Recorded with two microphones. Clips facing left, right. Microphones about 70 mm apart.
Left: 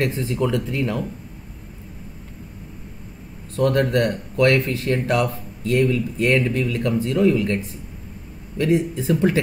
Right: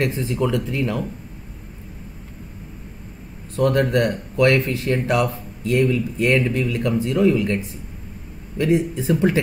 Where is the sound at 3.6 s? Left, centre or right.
Centre.